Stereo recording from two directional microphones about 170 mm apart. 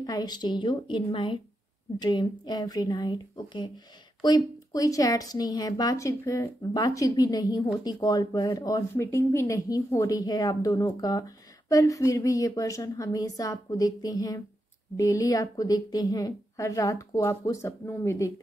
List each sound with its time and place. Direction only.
0.0 s a woman's voice: 20° left (ahead or behind)